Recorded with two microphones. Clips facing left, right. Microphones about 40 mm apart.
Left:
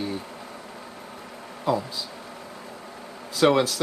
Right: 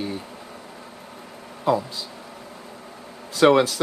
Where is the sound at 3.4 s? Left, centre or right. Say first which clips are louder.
Right 4 dB; centre.